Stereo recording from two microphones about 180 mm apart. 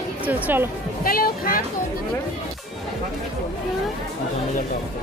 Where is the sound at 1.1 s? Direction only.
55° left (ahead or behind).